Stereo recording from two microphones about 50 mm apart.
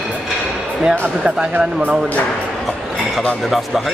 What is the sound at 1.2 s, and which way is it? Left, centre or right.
Speech, centre.